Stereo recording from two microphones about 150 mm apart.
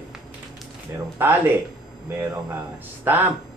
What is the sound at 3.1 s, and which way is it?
Speech, 15° right (ahead or behind).